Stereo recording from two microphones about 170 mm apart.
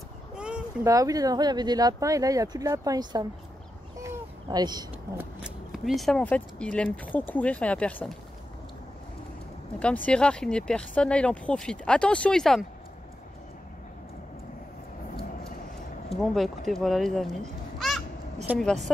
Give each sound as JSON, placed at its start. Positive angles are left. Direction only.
{"t": 0.3, "sound": "a sound", "side_deg": -5}
{"t": 0.8, "sound": "speech", "side_deg": -20}
{"t": 4.0, "sound": "a sound", "side_deg": -25}
{"t": 5.1, "sound": "speech", "side_deg": -5}
{"t": 9.8, "sound": "speech", "side_deg": 5}
{"t": 16.2, "sound": "speech", "side_deg": 0}